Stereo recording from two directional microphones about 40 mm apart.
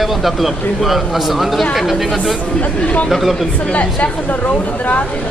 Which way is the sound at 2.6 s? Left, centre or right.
Left.